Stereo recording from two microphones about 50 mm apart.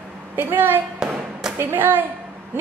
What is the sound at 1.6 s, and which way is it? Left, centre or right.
Speech, right.